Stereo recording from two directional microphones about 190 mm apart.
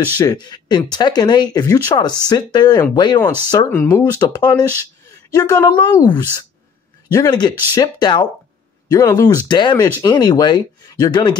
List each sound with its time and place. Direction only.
0.2 s speech: 20° left (ahead or behind)
3.5 s speech: 15° left (ahead or behind)